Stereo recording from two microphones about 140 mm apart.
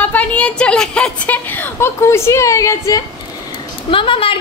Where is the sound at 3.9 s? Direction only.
40° left (ahead or behind).